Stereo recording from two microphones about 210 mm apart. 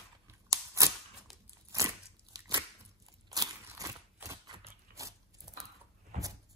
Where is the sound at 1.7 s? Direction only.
15° right (ahead or behind).